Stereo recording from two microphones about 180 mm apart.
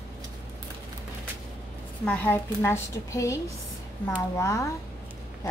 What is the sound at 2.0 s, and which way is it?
Speech, 5° left (ahead or behind).